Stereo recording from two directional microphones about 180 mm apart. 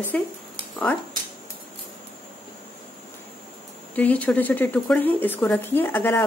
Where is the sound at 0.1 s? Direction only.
10° left (ahead or behind).